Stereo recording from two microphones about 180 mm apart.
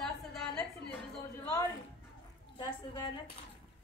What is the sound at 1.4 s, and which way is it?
Speech, 15° left (ahead or behind).